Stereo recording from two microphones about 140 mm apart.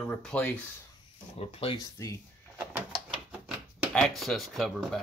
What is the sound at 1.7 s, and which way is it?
Speech, 25° left (ahead or behind).